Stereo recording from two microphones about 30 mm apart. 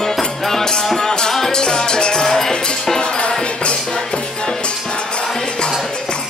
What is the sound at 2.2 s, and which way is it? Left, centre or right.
Music, centre.